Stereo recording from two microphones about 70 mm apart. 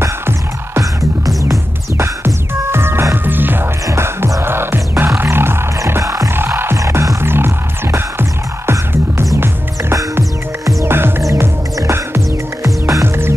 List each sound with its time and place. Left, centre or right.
0.0 s music: right
3.8 s music: right
6.8 s music: right
10.9 s music: right
12.6 s music: right
13.0 s music: right